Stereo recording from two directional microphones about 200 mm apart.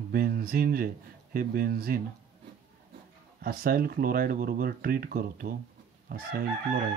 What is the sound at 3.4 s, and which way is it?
Speech, 50° right (ahead or behind).